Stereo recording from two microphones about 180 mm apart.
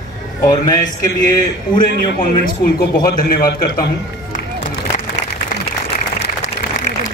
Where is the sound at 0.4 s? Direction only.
20° left (ahead or behind).